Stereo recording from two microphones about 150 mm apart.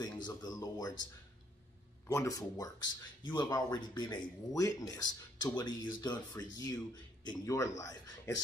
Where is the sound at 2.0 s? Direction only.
25° left (ahead or behind).